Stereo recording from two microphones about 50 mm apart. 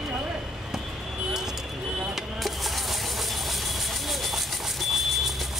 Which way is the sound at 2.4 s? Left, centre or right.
Centre.